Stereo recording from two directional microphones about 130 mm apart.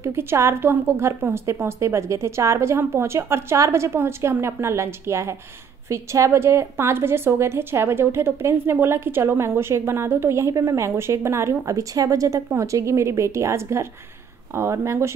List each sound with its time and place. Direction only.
0.0 s a woman's voice: 20° right (ahead or behind)